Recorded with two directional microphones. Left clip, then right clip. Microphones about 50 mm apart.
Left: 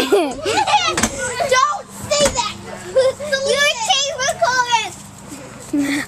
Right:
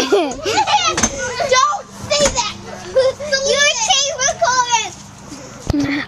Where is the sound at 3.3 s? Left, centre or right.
Right.